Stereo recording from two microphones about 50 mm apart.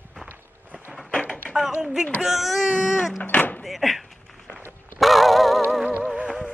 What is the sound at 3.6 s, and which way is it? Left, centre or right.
Door, centre.